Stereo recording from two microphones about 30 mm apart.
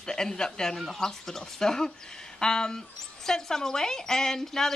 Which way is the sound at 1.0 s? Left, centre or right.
Centre.